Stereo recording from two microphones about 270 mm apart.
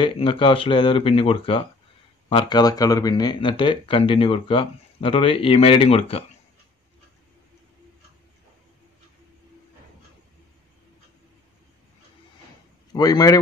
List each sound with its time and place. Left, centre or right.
0.0 s speech: centre
12.9 s speech: centre